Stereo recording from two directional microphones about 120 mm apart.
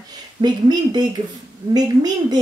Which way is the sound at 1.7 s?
35° right (ahead or behind).